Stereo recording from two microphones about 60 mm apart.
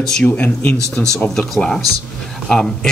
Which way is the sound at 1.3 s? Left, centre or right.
Centre.